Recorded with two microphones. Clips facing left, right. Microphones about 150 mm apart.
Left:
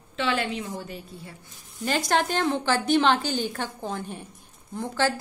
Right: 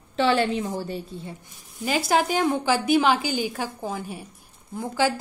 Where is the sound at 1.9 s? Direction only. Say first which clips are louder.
Right 2 dB; 5° right (ahead or behind).